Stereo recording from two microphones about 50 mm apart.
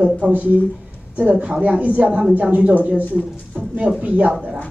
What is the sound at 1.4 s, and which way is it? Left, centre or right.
A woman's voice, right.